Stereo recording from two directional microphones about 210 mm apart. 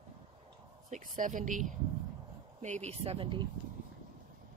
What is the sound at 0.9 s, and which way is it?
Speech, 40° right (ahead or behind).